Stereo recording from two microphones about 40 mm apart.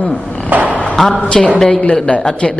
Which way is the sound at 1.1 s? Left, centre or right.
Left.